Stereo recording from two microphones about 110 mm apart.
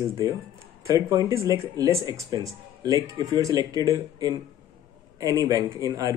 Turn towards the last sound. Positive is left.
turn(degrees=-30)  # may be behind; listen again after turning